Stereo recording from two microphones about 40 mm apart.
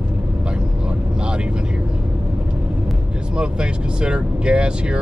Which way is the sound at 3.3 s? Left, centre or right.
Right.